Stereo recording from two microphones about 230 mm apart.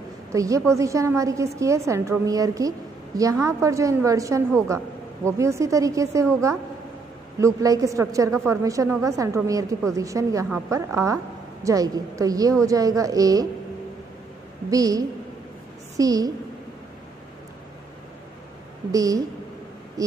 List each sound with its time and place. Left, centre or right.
0.3 s a woman's voice: centre
14.7 s a woman's voice: centre
18.9 s a woman's voice: centre